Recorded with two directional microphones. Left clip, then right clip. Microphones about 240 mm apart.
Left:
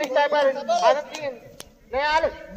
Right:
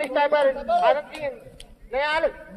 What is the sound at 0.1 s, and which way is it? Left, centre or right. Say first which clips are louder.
Speech: even; right.